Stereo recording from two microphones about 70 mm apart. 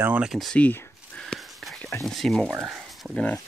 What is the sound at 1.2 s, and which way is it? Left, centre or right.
Whispering, centre.